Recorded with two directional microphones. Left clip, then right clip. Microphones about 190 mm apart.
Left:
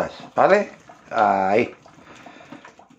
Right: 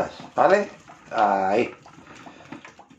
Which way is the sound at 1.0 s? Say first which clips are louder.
Left 2 dB; 35° left (ahead or behind).